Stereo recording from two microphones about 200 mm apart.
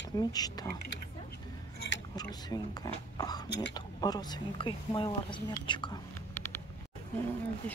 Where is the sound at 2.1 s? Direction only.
20° left (ahead or behind).